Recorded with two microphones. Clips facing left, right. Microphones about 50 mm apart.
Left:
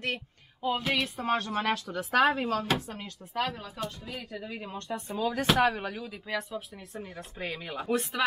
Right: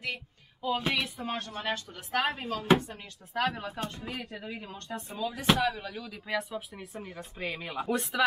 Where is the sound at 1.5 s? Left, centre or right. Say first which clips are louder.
Left 5 dB; left.